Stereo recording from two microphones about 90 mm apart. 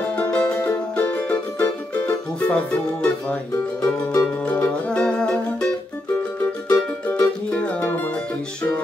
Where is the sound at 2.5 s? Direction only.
10° left (ahead or behind).